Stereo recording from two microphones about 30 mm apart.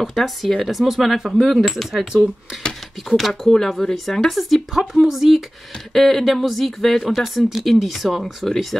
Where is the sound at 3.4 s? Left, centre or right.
Centre.